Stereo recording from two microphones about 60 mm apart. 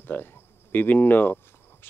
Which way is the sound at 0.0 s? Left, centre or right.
Left.